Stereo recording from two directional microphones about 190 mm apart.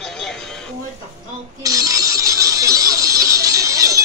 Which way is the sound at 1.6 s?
15° right (ahead or behind).